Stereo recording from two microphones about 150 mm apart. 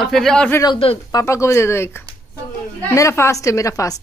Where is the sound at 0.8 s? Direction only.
40° left (ahead or behind).